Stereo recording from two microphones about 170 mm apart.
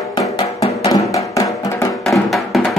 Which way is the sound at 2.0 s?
Centre (ahead or behind).